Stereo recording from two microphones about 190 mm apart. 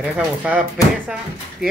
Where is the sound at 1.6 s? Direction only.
Centre (ahead or behind).